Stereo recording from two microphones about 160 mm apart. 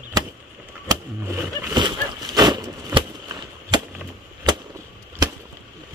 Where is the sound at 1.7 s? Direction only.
25° right (ahead or behind).